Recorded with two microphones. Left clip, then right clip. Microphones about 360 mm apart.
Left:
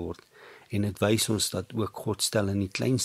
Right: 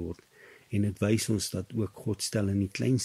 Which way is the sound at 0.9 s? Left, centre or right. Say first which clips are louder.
Left 5 dB; centre.